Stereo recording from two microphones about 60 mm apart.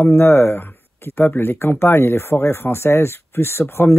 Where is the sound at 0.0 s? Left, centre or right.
Left.